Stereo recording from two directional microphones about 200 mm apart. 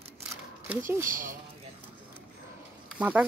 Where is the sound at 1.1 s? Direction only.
40° right (ahead or behind).